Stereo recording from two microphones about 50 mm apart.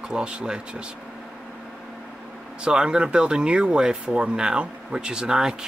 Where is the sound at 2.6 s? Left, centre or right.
Centre.